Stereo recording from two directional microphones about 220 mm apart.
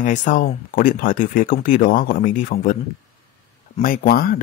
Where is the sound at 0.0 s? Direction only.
35° left (ahead or behind).